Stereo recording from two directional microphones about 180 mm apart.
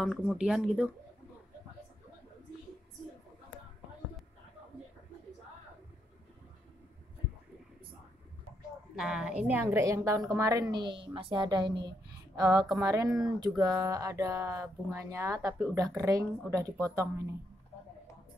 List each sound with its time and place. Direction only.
0.0 s speech: 5° right (ahead or behind)
8.9 s a woman's voice: 5° right (ahead or behind); by 16.8 s 20° right (ahead or behind)